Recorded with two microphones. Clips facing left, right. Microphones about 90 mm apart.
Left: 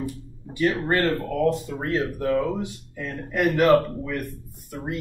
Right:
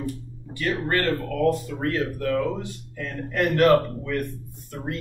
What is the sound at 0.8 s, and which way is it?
Speech, 20° left (ahead or behind).